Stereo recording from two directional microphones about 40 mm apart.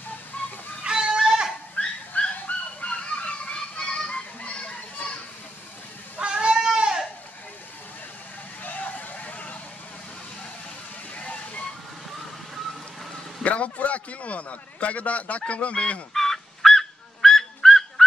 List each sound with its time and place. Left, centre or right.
0.4 s music: left
0.8 s music: centre
1.8 s dog: left
2.9 s honk: left
6.1 s goat: right
8.6 s a sound: left
11.1 s slosh: left
13.4 s a man's voice: left
16.1 s fowl: centre